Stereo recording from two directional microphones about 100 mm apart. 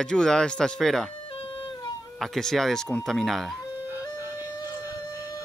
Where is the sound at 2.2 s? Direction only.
Centre (ahead or behind).